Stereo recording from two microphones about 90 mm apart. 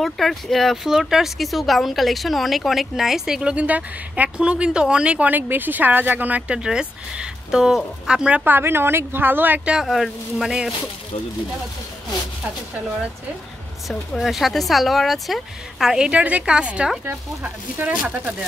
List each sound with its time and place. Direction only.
0.0 s speech: centre (ahead or behind)
8.5 s speech: 25° right (ahead or behind)
9.8 s speech: 5° right (ahead or behind)
13.8 s speech: centre (ahead or behind)
17.0 s speech: 20° right (ahead or behind)